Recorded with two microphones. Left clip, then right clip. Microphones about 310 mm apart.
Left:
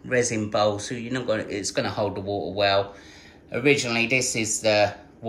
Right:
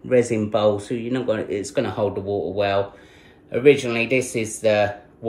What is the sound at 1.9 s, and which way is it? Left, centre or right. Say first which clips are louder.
Speech: right 3 dB; right.